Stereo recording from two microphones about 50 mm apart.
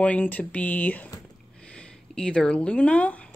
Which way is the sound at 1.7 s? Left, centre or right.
Centre.